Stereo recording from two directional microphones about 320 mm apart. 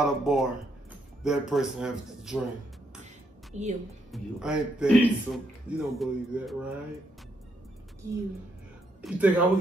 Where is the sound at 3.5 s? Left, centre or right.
Right.